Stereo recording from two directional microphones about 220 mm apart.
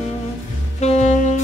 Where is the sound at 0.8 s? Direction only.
30° left (ahead or behind).